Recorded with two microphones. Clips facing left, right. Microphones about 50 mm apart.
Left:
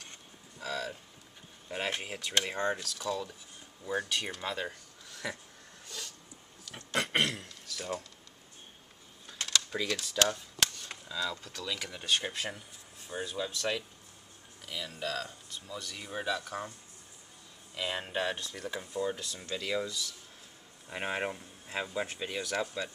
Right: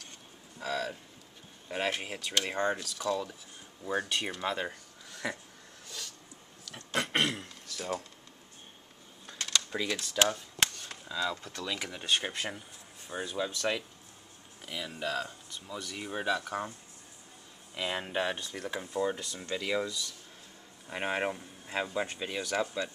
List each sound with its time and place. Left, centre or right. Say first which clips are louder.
0.6 s a sound: right 3 dB; centre
1.7 s speech: right 2 dB; centre
6.9 s throat clearing: even; centre
7.2 s throat clearing: right 2 dB; centre
7.7 s a sound: right 2 dB; centre
9.3 s a sound: even; centre
10.1 s cap gun: right 2 dB; centre
11.1 s speech: right 2 dB; centre
17.7 s speech: right 1 dB; centre